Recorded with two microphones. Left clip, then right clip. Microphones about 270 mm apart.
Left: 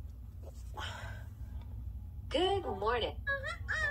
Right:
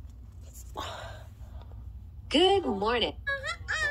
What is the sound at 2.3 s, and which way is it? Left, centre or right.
Fowl, right.